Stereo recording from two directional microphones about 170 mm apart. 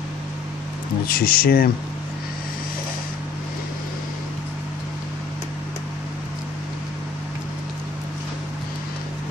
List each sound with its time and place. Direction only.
1.0 s speech: 60° left (ahead or behind)